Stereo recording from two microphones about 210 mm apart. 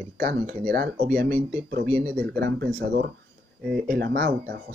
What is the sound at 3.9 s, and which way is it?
Speech, 45° right (ahead or behind).